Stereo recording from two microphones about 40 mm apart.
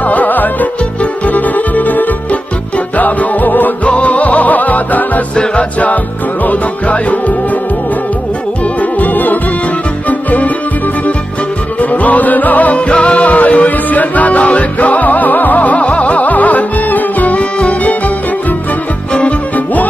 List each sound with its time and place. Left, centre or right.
0.0 s music: left
3.9 s music: left
5.3 s music: left
6.4 s music: left
9.0 s music: left
11.8 s music: left
12.7 s music: left
17.4 s music: left
19.1 s music: left